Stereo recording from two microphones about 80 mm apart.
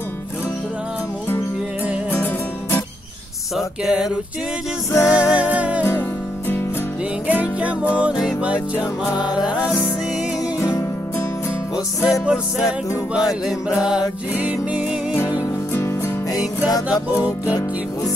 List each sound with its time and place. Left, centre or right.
2.1 s music: left
3.5 s music: centre
4.9 s music: left
5.4 s music: centre
7.2 s music: centre
9.1 s music: left
10.6 s music: left
12.1 s music: centre
16.3 s music: left